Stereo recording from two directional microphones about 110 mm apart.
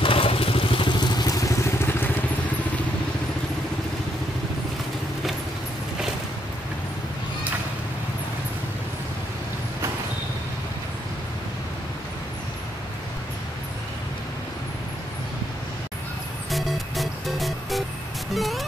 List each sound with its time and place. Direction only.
0.0 s motorcycle: 55° left (ahead or behind); by 1.7 s 30° left (ahead or behind)
1.9 s vehicle: 20° left (ahead or behind)
16.4 s music: centre (ahead or behind)